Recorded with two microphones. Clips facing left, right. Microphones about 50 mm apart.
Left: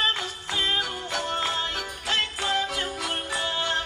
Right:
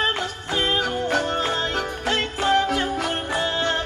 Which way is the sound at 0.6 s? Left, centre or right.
Right.